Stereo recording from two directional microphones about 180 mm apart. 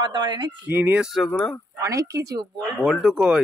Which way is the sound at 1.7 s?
20° right (ahead or behind).